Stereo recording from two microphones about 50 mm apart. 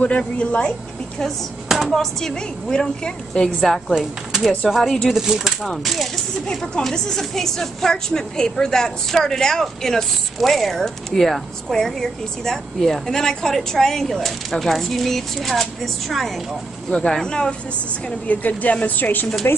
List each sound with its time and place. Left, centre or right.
0.2 s a woman's voice: left
1.7 s a sound: centre
2.0 s a woman's voice: centre
3.9 s speech: centre
6.5 s a woman's voice: centre
18.3 s a woman's voice: left
19.4 s speech: left